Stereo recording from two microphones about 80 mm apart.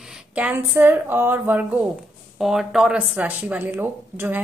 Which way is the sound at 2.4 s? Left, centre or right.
Centre.